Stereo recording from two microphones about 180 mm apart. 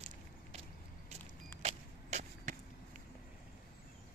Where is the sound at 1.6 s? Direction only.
40° right (ahead or behind).